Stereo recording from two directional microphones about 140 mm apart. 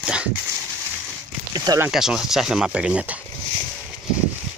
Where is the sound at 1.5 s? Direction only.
25° right (ahead or behind).